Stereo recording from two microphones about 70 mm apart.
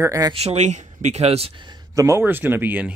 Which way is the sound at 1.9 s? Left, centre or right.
Right.